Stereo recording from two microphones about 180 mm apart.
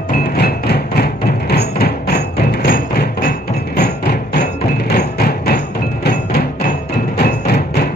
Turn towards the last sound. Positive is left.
turn(degrees=60)  # may be behind; listen again after turning